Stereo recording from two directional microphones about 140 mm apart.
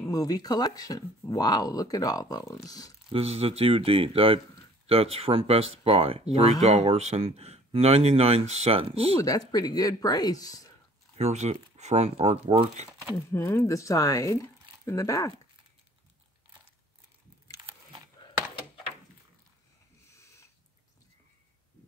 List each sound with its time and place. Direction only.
0.1 s speech: 25° left (ahead or behind)
3.1 s speech: 45° right (ahead or behind)
9.2 s speech: 25° left (ahead or behind)
11.1 s speech: 50° right (ahead or behind)
13.1 s speech: 15° left (ahead or behind)
20.1 s a sound: 20° left (ahead or behind)